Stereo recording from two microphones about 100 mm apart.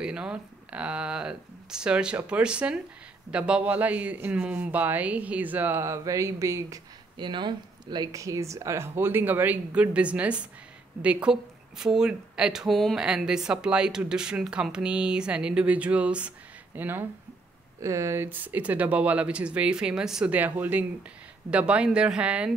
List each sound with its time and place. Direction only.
0.0 s speech: 10° right (ahead or behind); by 6.8 s 30° right (ahead or behind)
7.2 s speech: 50° right (ahead or behind)
8.1 s speech: 35° right (ahead or behind); by 22.5 s 10° right (ahead or behind)